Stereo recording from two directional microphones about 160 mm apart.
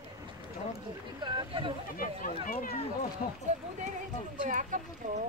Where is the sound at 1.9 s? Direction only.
60° left (ahead or behind).